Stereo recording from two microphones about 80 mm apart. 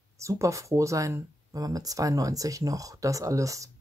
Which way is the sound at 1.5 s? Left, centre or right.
Right.